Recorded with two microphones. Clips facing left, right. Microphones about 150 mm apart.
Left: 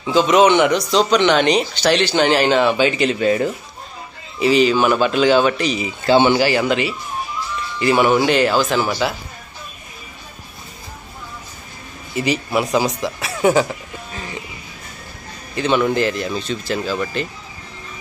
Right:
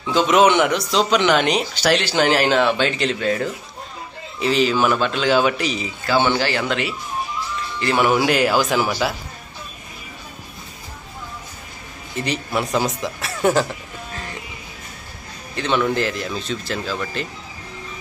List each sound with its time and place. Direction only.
0.0 s speech: centre (ahead or behind)
6.0 s speech: 25° left (ahead or behind)
6.3 s speech: 10° left (ahead or behind)
12.2 s speech: 5° left (ahead or behind)
14.1 s music: 10° left (ahead or behind)
15.5 s speech: 5° left (ahead or behind)